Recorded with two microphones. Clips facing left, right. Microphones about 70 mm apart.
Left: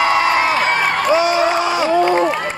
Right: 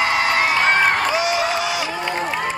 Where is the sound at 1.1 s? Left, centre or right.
Left.